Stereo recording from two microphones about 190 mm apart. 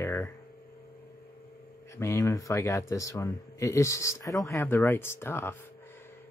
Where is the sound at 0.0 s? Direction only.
10° left (ahead or behind).